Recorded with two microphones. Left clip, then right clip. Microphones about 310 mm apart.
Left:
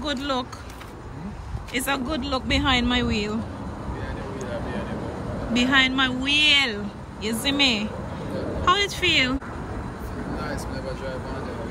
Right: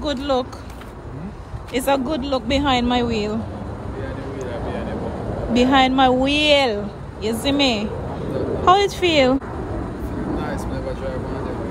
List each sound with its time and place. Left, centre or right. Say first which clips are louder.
0.0 s a woman's voice: right 5 dB; centre
1.7 s a woman's voice: right 6 dB; centre
5.5 s a woman's voice: right 4 dB; centre